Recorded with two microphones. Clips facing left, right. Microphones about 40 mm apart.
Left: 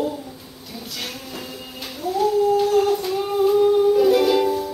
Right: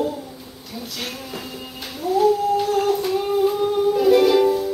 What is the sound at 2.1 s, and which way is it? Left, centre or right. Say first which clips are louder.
Humming: even; centre.